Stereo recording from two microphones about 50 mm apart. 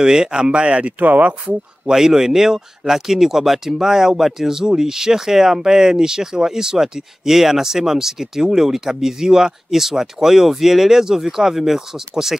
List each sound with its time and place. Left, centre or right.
0.0 s speech: centre
0.9 s speech: right
1.9 s speech: centre